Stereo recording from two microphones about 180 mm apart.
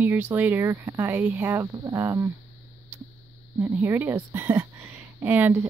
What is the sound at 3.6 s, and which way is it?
Speech, 10° right (ahead or behind).